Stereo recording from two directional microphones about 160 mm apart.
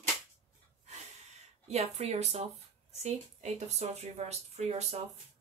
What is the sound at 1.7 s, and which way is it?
Speech, 45° right (ahead or behind).